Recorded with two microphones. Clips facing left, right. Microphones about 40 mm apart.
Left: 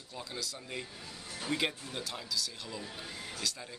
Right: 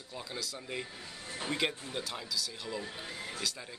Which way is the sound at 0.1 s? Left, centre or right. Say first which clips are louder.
Right 1 dB; centre.